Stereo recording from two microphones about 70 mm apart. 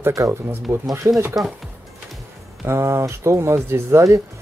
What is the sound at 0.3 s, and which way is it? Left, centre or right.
Speech, right.